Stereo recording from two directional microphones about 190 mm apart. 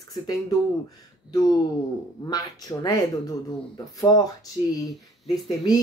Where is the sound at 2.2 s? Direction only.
20° left (ahead or behind).